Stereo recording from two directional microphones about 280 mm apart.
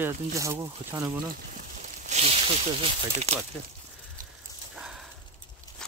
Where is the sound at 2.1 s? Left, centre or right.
Right.